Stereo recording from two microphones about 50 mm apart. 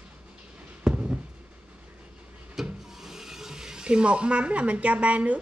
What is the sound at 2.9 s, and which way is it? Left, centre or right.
Speech, centre.